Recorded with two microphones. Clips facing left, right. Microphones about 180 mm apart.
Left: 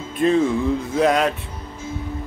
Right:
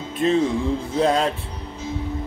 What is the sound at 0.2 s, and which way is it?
Music, 25° right (ahead or behind).